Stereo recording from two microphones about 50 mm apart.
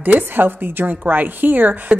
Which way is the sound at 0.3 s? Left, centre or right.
Right.